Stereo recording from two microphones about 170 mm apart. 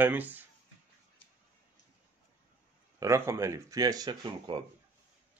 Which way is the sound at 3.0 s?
15° right (ahead or behind).